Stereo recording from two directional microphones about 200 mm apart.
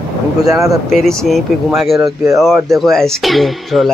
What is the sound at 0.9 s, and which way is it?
Speech, centre (ahead or behind).